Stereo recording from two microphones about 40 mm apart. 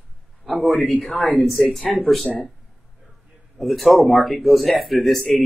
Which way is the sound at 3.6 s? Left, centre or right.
Centre.